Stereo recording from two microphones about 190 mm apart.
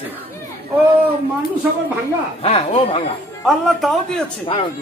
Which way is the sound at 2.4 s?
30° left (ahead or behind).